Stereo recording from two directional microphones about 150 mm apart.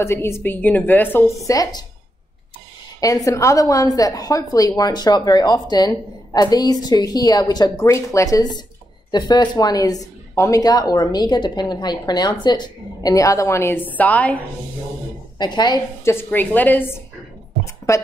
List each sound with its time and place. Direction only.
0.0 s a woman's voice: 15° left (ahead or behind)
3.0 s a woman's voice: 25° left (ahead or behind)
15.3 s a woman's voice: 30° left (ahead or behind)